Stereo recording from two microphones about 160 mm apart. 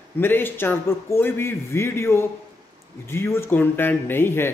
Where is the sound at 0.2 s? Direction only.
15° left (ahead or behind).